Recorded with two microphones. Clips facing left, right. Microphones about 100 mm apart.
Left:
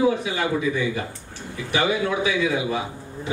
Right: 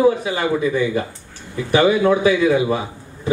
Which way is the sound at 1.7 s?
45° right (ahead or behind).